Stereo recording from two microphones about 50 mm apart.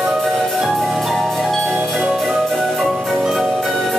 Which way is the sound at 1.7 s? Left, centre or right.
Right.